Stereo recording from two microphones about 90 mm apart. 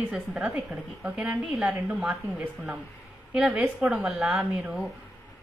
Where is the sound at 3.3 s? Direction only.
5° right (ahead or behind).